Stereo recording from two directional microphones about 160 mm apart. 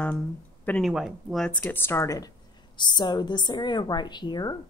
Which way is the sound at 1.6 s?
15° left (ahead or behind).